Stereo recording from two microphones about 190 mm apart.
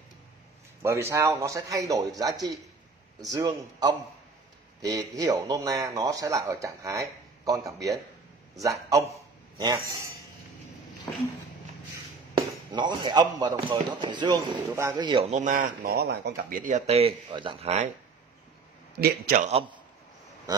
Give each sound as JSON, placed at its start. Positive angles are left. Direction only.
{"t": 0.8, "sound": "a man's voice", "side_deg": -15}
{"t": 12.4, "sound": "speech", "side_deg": -25}
{"t": 15.2, "sound": "speech", "side_deg": -40}
{"t": 18.9, "sound": "a man's voice", "side_deg": -55}
{"t": 19.4, "sound": "speech", "side_deg": -30}